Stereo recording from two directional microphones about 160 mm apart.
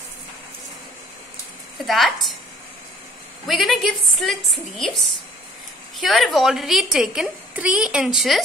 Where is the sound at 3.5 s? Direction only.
Centre (ahead or behind).